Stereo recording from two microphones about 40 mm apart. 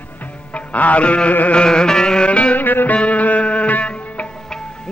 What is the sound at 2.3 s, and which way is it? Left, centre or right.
Music, left.